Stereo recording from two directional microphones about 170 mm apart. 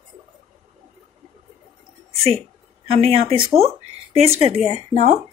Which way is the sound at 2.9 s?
35° right (ahead or behind).